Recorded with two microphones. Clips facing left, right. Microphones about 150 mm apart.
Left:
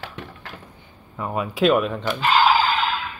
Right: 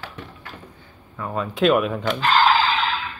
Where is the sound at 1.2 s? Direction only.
15° left (ahead or behind).